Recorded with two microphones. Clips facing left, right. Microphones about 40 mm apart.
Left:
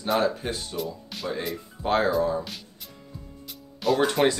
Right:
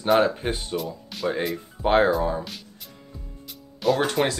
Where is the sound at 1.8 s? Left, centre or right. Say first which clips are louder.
Right 4 dB; right.